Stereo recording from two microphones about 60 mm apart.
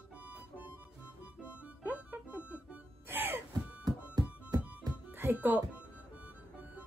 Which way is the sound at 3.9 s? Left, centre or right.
Right.